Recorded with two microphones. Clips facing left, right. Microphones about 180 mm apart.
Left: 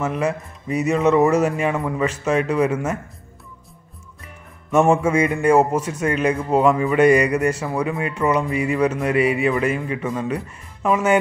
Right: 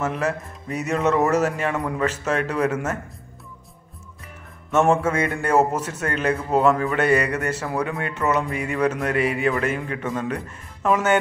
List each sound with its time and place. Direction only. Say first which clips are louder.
0.0 s speech: left 2 dB; 10° left (ahead or behind)
4.6 s speech: left 2 dB; 10° left (ahead or behind)